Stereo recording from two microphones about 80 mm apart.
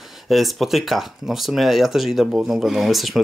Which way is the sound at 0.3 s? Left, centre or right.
Centre.